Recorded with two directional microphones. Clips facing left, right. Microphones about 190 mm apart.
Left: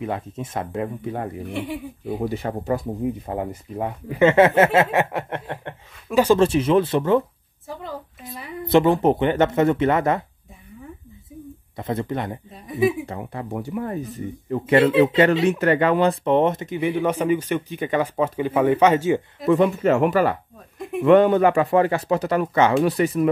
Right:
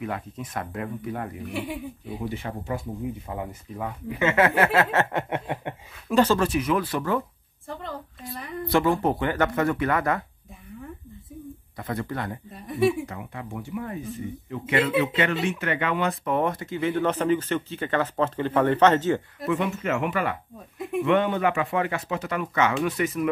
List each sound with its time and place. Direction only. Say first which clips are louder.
0.0 s speech: left 4 dB; 25° left (ahead or behind)
2.0 s speech: left 8 dB; 40° left (ahead or behind); by 4.8 s 20° left (ahead or behind)
5.1 s a sound: even; 10° right (ahead or behind)
6.3 s speech: left 6 dB; 25° left (ahead or behind)
8.6 s speech: left 6 dB; 20° left (ahead or behind)
11.7 s speech: left 5 dB; 25° left (ahead or behind)
12.5 s speech: left 2 dB; centre (ahead or behind)
13.0 s speech: left 5 dB; 30° left (ahead or behind); by 19.2 s 10° left (ahead or behind)
19.5 s speech: left 8 dB; 35° left (ahead or behind)